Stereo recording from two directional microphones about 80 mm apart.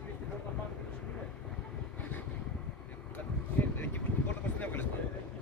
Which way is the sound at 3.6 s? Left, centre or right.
Left.